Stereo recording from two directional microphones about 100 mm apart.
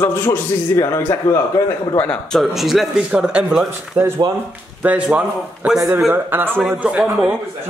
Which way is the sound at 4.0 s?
15° right (ahead or behind).